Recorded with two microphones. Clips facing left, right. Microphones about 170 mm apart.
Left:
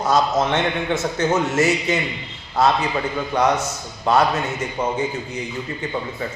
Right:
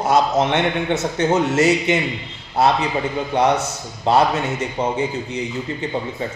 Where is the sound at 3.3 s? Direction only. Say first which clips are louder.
Right 2 dB; 25° right (ahead or behind).